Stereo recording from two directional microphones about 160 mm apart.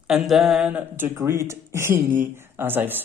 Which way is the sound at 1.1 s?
20° right (ahead or behind).